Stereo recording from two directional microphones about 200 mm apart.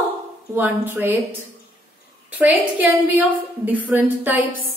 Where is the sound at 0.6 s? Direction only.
10° right (ahead or behind).